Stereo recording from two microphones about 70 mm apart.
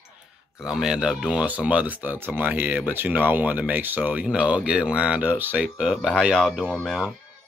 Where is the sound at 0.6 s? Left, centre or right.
Centre; by 4.2 s right.